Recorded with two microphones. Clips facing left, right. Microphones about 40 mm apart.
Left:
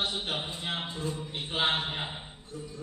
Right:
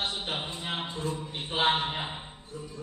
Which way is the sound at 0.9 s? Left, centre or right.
Right.